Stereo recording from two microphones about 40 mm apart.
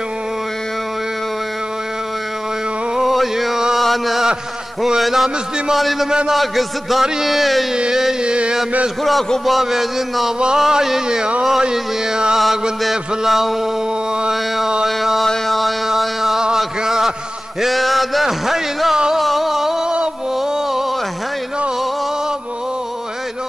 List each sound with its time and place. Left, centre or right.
3.0 s a sound: centre
3.7 s chant: centre
5.0 s a man's voice: centre
6.0 s a man's voice: centre
6.3 s a man's voice: centre
7.9 s a man's voice: centre
8.2 s chant: right
9.5 s a man's voice: centre
12.9 s a man's voice: centre
15.2 s a sound: centre
16.0 s a sound: centre
17.6 s a man's voice: centre
19.1 s a sound: centre